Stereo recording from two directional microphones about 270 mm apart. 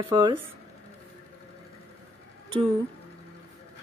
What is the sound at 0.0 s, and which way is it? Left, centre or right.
Speech, centre.